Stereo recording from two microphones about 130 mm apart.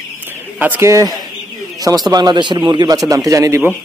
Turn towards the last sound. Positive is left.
turn(degrees=-25)  # may be behind; listen again after turning